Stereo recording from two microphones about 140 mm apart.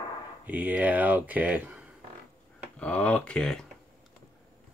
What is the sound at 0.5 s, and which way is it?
Speech, 10° right (ahead or behind).